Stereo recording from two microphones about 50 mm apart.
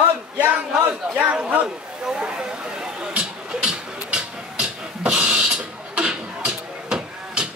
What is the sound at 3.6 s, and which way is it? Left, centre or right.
Music, centre.